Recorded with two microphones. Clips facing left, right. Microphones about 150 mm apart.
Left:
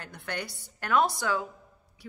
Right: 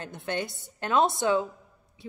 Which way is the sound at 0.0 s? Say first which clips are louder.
Right 5 dB; 20° right (ahead or behind).